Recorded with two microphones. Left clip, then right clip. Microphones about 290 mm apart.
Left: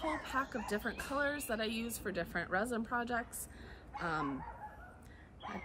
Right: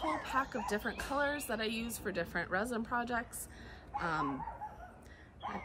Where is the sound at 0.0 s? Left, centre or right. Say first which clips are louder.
Right 2 dB; centre.